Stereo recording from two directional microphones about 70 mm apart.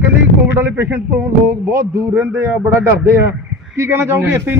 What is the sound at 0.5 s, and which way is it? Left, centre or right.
A man's voice, right.